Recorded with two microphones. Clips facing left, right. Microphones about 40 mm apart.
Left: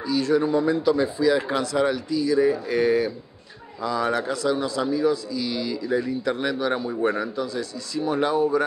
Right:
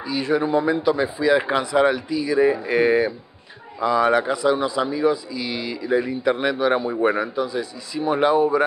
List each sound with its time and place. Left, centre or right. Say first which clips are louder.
0.0 s a man's voice: even; centre